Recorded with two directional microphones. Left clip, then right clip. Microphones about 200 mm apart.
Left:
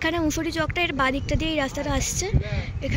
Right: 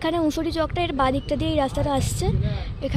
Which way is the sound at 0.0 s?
10° right (ahead or behind).